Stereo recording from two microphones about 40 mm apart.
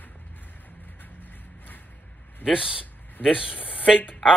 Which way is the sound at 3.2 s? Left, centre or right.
Left.